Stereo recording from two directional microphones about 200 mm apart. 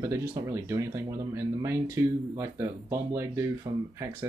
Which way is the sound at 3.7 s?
30° right (ahead or behind).